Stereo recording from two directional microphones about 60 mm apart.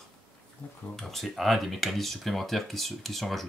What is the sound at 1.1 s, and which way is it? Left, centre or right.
Speech, centre.